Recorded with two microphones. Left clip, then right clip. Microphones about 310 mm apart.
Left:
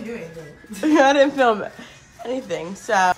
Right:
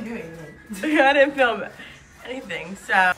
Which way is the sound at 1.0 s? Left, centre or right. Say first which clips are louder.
Left 1 dB; centre.